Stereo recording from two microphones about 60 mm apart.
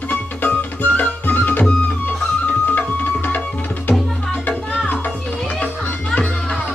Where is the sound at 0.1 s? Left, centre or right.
Left.